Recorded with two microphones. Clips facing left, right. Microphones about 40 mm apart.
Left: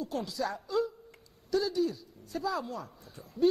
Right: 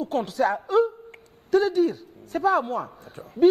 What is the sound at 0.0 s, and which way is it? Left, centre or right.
A woman's voice, right.